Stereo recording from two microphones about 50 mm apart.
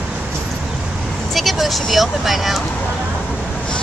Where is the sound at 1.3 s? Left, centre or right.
Centre.